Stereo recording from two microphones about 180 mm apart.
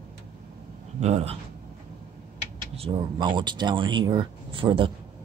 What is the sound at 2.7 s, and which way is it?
Speech, 30° right (ahead or behind).